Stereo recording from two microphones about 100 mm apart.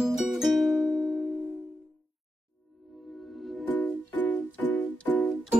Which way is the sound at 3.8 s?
15° left (ahead or behind).